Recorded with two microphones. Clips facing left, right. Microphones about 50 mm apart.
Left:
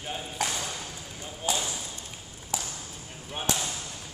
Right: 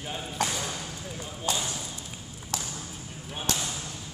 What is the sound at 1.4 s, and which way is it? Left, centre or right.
Basketball bounce, centre.